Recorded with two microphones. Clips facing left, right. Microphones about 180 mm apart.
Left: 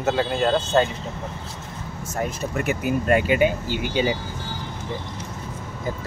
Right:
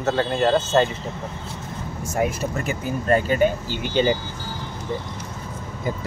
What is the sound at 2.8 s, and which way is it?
Speech, 15° left (ahead or behind).